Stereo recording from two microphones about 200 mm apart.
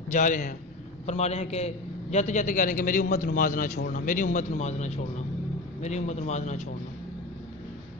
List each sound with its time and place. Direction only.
0.1 s a man's voice: 40° left (ahead or behind)